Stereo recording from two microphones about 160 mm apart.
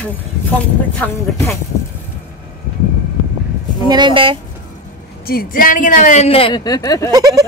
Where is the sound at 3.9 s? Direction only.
30° right (ahead or behind).